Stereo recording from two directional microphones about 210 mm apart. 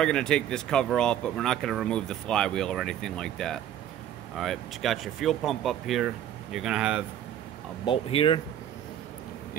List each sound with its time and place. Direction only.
0.0 s speech: 5° left (ahead or behind)
7.8 s speech: 25° left (ahead or behind)